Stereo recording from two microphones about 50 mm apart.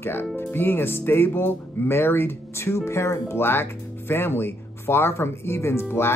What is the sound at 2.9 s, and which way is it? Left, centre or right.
Speech, left.